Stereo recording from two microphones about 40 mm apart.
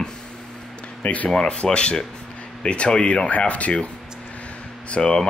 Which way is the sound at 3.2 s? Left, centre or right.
Left.